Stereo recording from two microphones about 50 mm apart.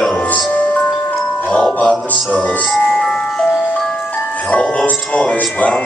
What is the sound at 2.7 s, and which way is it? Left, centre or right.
Music, centre.